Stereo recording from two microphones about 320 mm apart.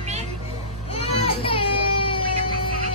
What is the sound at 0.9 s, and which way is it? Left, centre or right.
Baby cry, centre.